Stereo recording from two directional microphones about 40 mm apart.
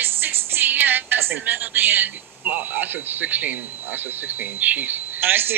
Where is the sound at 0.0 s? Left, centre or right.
Right.